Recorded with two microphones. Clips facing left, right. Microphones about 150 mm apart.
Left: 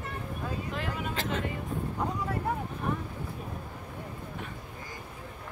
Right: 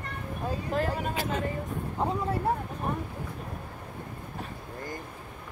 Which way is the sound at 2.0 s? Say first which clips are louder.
Right 5 dB; 30° right (ahead or behind).